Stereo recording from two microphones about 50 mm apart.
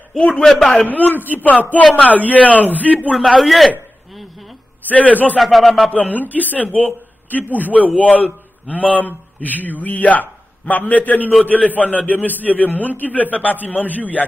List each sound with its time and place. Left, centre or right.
0.2 s a man's voice: centre
0.8 s a man's voice: left
3.2 s a man's voice: centre
4.1 s a sound: centre
4.9 s a man's voice: left
5.4 s a man's voice: centre
5.9 s a man's voice: left